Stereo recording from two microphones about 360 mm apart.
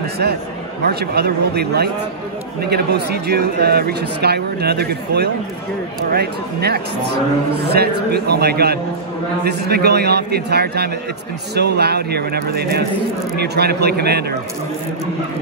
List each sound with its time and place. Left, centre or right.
0.8 s speech: right